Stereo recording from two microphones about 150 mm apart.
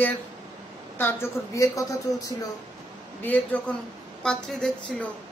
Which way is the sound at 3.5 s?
10° left (ahead or behind).